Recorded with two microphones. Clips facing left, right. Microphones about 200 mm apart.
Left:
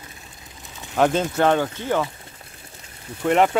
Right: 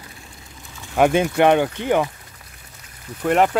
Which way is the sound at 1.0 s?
15° right (ahead or behind).